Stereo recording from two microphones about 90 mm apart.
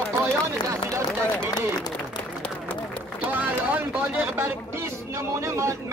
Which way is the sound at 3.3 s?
15° right (ahead or behind).